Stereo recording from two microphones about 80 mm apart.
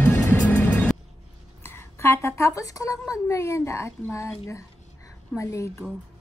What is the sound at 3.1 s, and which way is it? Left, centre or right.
Speech, left.